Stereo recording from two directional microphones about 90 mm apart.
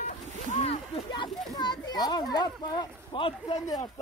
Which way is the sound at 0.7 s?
75° left (ahead or behind).